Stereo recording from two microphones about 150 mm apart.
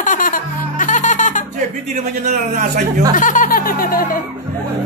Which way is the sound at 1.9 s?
55° right (ahead or behind).